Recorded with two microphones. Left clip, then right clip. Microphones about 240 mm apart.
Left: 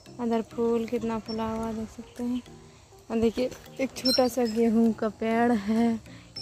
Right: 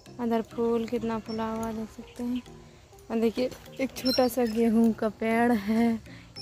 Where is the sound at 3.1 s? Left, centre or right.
Centre.